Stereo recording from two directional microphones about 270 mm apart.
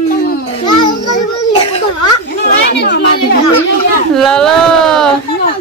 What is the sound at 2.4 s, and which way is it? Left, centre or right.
Chatter, left.